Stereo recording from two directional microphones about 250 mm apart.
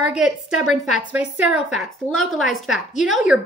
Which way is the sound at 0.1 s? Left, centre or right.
Centre.